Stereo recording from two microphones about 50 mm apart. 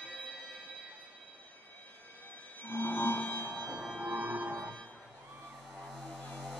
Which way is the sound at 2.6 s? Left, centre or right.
Left.